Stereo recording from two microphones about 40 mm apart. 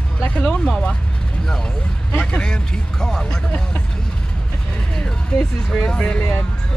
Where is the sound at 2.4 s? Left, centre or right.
Centre.